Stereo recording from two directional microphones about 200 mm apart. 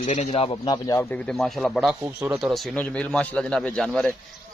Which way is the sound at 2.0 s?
10° right (ahead or behind).